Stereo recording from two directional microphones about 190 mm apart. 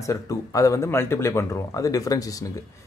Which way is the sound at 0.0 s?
15° left (ahead or behind).